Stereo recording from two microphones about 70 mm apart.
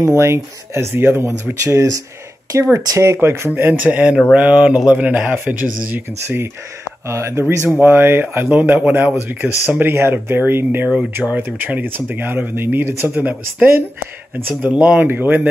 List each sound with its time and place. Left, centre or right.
0.0 s speech: right
1.5 s speech: right
3.0 s speech: right
6.2 s speech: right
13.2 s speech: right